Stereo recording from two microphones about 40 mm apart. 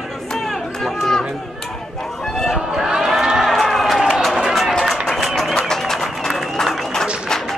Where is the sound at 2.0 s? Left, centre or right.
Centre.